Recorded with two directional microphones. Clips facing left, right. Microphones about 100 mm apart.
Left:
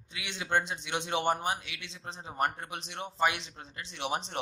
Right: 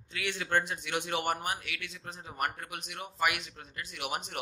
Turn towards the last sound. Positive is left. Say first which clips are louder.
# left 3 dB
turn(degrees=30)  # may be behind; listen again after turning